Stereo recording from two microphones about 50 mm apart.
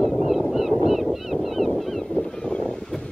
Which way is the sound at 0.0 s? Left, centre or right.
Centre.